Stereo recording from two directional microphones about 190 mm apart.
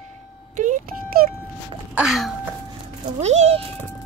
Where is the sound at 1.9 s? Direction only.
Centre (ahead or behind).